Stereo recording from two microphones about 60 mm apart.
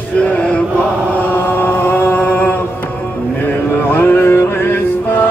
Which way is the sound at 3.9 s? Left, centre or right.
Left.